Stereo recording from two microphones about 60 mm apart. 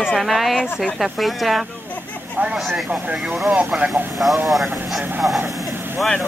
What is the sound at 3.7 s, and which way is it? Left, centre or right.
Speech, centre.